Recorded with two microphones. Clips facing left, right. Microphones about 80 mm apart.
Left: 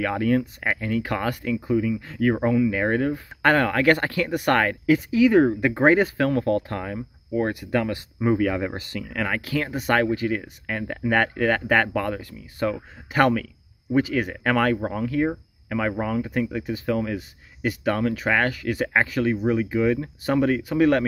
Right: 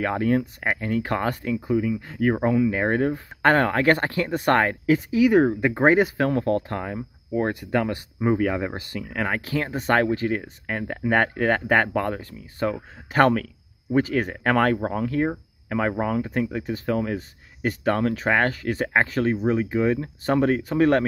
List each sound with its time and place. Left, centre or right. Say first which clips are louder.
0.0 s speech: even; right
2.4 s speech: even; right
13.1 s speech: right 1 dB; right